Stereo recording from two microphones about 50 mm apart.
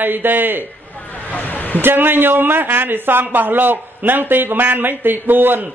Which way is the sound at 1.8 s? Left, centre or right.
Right.